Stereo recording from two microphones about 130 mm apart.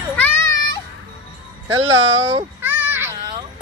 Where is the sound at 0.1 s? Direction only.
10° left (ahead or behind).